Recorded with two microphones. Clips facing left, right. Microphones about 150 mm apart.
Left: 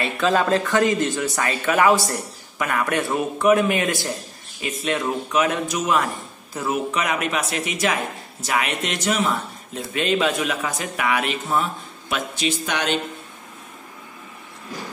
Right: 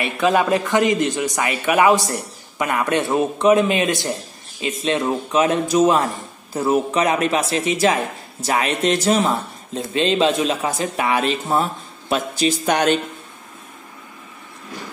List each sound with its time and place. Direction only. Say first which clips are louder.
0.0 s a man's voice: right 2 dB; 15° right (ahead or behind); by 13.0 s 45° right (ahead or behind)